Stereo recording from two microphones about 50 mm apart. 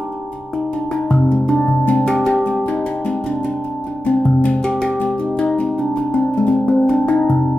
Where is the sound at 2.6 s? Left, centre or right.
Left.